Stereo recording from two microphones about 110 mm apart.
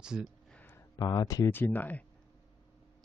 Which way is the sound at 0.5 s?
15° left (ahead or behind).